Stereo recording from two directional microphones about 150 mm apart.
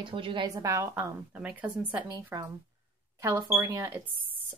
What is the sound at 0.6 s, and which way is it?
Speech, 20° right (ahead or behind).